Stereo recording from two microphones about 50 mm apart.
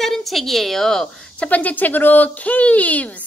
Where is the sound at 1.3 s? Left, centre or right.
Left.